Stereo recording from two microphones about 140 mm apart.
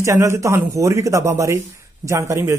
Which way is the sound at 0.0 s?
20° right (ahead or behind).